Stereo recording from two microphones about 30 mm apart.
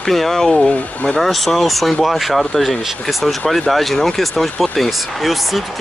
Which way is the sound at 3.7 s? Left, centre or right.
Centre.